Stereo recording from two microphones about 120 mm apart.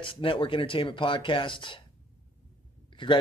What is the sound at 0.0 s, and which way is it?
Speech, 45° left (ahead or behind).